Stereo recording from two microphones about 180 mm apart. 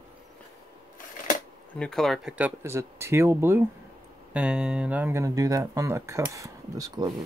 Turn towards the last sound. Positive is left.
turn(degrees=-20)  # may be behind; listen again after turning